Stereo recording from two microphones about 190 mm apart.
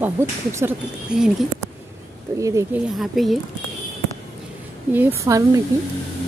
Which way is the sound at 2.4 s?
15° right (ahead or behind).